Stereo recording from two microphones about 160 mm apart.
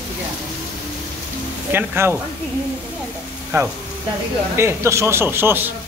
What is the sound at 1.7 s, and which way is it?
Speech, 15° right (ahead or behind).